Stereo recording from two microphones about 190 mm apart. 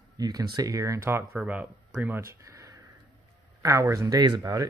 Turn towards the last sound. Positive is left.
turn(degrees=-20)  # may be behind; listen again after turning